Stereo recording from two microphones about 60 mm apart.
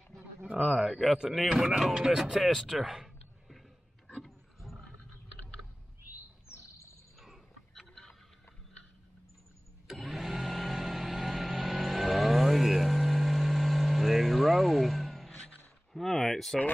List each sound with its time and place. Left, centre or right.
0.7 s a man's voice: centre
1.1 s speech: centre
4.2 s roaring cats: centre
6.5 s chirp: left
7.2 s a sound: centre
9.8 s vehicle: centre
15.9 s a sound: centre